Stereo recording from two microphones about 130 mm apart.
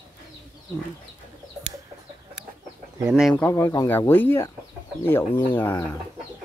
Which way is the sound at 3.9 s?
15° left (ahead or behind).